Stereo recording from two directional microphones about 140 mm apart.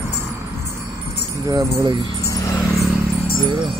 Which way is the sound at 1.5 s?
30° right (ahead or behind).